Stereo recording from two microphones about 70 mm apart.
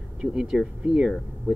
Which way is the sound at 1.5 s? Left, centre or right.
Right.